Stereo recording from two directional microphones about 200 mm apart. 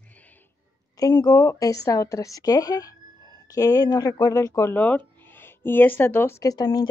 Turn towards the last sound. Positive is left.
turn(degrees=20)  # may be behind; listen again after turning